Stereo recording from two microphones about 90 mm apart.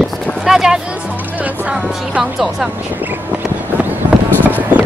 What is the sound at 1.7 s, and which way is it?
Speech, 10° right (ahead or behind).